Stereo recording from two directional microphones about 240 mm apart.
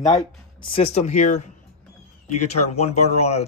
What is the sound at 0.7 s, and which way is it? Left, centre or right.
Speech, left.